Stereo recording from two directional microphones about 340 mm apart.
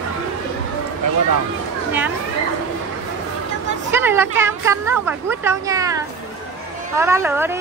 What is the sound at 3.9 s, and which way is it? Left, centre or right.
Speech, centre.